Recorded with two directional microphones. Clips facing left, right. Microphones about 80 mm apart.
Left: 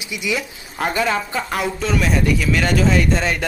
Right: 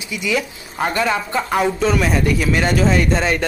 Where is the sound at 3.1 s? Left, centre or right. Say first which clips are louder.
Right 2 dB; centre.